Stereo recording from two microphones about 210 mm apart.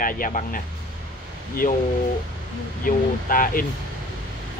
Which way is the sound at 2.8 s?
40° left (ahead or behind).